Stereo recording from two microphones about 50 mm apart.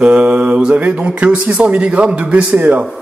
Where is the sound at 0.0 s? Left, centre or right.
Right.